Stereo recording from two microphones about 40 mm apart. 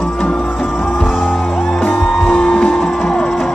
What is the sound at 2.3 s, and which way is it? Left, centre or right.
Music, centre.